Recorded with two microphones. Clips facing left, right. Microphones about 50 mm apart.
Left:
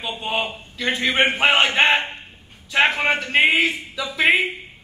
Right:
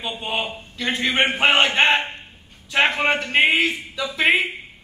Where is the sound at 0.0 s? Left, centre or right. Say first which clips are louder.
Left 1 dB; centre.